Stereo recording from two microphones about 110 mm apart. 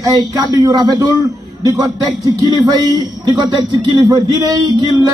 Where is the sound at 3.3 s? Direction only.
45° right (ahead or behind).